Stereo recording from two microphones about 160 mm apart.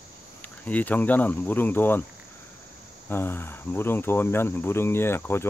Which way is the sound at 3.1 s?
15° left (ahead or behind).